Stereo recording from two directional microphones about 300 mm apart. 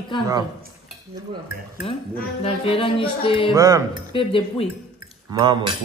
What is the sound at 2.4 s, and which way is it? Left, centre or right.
Music, centre.